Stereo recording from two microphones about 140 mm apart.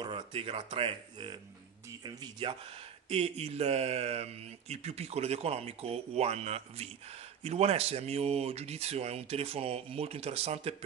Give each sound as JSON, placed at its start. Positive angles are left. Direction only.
{"t": 0.0, "sound": "speech", "side_deg": -40}
{"t": 3.1, "sound": "speech", "side_deg": -45}